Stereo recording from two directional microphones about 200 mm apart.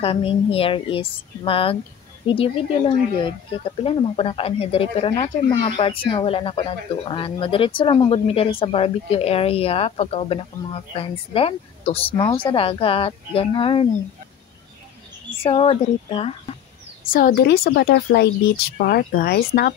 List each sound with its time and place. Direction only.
0.0 s speech: 25° left (ahead or behind)
15.4 s speech: 25° left (ahead or behind)
17.1 s speech: 45° left (ahead or behind)